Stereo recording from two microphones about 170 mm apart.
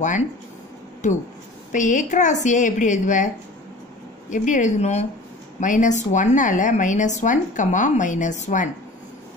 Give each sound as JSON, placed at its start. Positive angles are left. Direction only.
{"t": 1.0, "sound": "speech", "side_deg": 45}
{"t": 4.3, "sound": "speech", "side_deg": 45}